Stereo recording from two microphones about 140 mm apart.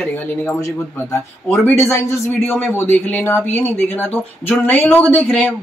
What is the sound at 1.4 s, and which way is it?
Speech, 10° left (ahead or behind).